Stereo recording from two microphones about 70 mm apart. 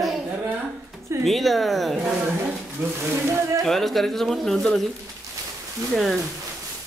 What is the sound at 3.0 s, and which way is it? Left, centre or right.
Speech, right.